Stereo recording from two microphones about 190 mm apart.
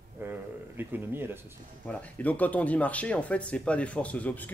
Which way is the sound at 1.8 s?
10° left (ahead or behind).